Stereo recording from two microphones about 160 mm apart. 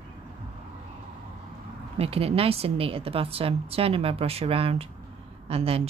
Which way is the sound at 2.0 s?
40° right (ahead or behind).